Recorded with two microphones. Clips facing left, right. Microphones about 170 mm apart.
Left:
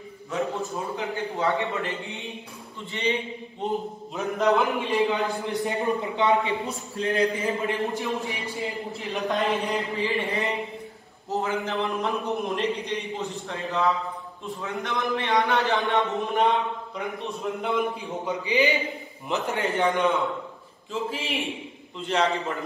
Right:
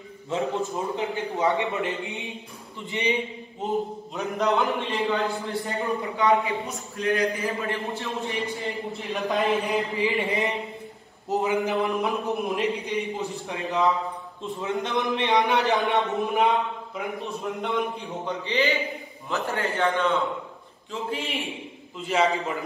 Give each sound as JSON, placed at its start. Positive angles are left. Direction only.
{"t": 0.3, "sound": "a man's voice", "side_deg": -20}
{"t": 3.6, "sound": "speech", "side_deg": 0}
{"t": 4.9, "sound": "speech", "side_deg": 15}
{"t": 6.7, "sound": "a man's voice", "side_deg": 30}
{"t": 8.6, "sound": "speech", "side_deg": 0}
{"t": 9.9, "sound": "a man's voice", "side_deg": -15}
{"t": 12.3, "sound": "speech", "side_deg": 0}
{"t": 13.5, "sound": "a man's voice", "side_deg": -15}
{"t": 16.9, "sound": "speech", "side_deg": 0}
{"t": 20.9, "sound": "speech", "side_deg": 0}